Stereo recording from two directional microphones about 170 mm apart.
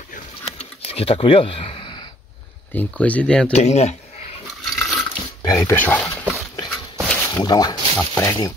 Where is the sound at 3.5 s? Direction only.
40° left (ahead or behind).